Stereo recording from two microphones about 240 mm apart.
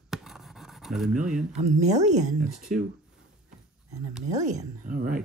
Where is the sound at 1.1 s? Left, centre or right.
Right.